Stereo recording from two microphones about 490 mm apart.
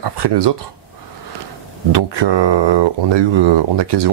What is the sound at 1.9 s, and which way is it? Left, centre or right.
Speech, right.